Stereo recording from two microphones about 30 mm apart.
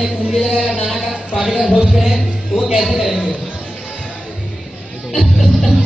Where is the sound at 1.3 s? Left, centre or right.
Centre.